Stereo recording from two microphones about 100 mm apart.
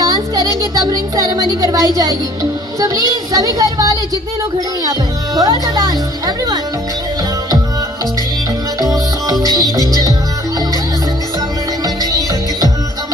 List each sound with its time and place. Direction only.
0.0 s music: 35° right (ahead or behind)
0.6 s speech: 40° right (ahead or behind)
8.7 s music: 40° right (ahead or behind)
9.3 s music: 45° left (ahead or behind)
9.6 s music: 35° right (ahead or behind)
11.8 s music: 40° right (ahead or behind)